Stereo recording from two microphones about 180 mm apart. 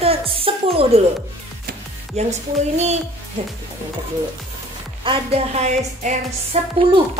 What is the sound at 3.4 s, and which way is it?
Speech, 35° right (ahead or behind).